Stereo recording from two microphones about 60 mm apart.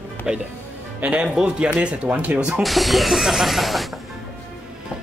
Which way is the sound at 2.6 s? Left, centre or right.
Centre.